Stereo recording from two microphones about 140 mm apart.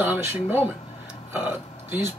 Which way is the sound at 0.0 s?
15° right (ahead or behind).